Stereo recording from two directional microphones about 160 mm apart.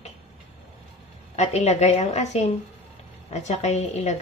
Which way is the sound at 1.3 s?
45° left (ahead or behind).